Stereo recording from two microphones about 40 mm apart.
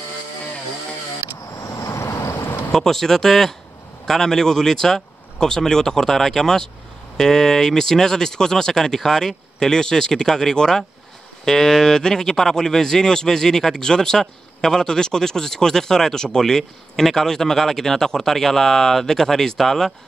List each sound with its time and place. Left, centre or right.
2.1 s vehicle: left
2.7 s speech: centre